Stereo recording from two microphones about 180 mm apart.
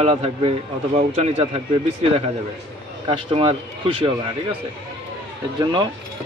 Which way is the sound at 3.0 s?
30° right (ahead or behind).